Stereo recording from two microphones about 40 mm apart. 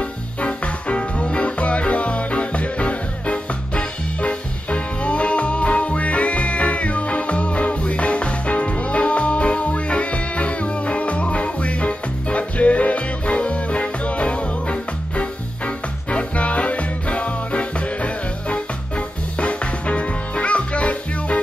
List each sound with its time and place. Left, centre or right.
0.0 s music: left